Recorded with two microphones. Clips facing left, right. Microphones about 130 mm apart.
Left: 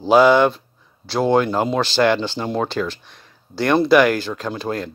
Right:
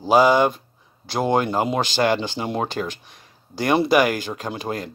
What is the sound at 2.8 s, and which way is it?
Speech, 65° left (ahead or behind).